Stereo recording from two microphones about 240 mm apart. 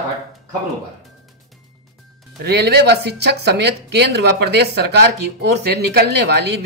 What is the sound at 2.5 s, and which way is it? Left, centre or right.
A woman's voice, right.